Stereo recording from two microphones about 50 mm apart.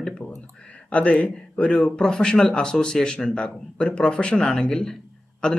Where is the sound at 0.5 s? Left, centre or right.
Left.